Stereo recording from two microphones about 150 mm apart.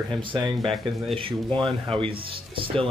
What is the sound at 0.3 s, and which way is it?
Speech, 30° right (ahead or behind).